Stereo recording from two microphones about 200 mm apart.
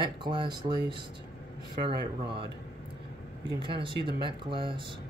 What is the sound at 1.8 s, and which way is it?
Speech, 25° right (ahead or behind).